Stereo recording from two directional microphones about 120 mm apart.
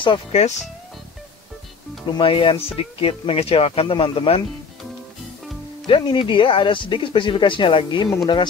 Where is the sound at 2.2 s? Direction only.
45° left (ahead or behind).